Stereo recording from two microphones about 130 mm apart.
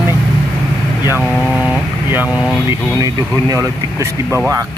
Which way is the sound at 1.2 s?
Centre (ahead or behind).